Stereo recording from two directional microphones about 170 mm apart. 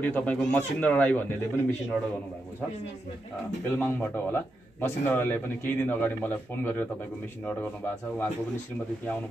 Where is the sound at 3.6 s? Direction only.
10° left (ahead or behind).